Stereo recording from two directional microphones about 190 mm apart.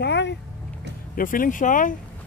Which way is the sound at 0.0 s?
65° left (ahead or behind).